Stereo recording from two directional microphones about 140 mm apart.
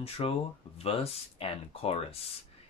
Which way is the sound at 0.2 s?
45° left (ahead or behind).